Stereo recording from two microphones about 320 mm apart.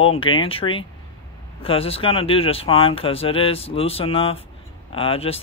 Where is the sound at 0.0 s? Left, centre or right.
Centre.